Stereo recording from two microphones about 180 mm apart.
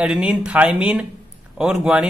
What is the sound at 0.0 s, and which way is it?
A man's voice, 5° right (ahead or behind).